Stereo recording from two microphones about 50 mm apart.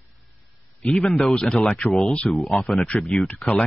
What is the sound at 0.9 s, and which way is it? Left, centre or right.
Speech, centre.